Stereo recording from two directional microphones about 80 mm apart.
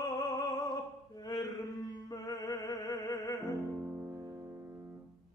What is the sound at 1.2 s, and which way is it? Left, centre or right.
Music, left.